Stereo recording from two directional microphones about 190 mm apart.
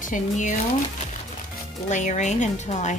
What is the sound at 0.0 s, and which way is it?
Speech, 40° left (ahead or behind).